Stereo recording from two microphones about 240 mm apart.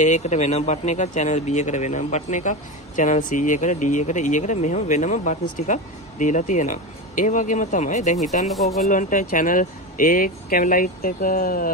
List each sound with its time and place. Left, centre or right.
0.0 s speech: left
8.5 s speech: centre
8.8 s speech: left